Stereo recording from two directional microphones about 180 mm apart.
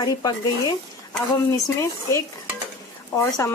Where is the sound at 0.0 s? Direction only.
20° left (ahead or behind).